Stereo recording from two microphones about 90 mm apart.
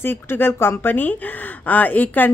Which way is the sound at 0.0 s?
25° left (ahead or behind).